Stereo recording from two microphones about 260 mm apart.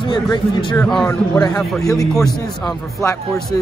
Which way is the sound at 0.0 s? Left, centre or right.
Centre.